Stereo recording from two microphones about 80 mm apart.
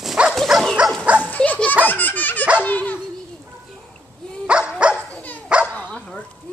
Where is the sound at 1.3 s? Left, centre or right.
Centre.